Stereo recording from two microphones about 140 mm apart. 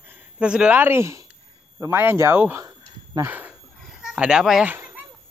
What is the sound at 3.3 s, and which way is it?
Wild animals, 10° right (ahead or behind).